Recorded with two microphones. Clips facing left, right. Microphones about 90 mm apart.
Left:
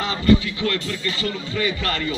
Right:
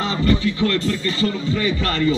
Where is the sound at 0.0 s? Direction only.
35° right (ahead or behind).